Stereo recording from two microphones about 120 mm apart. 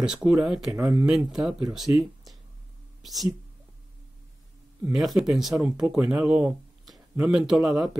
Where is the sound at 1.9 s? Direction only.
20° right (ahead or behind).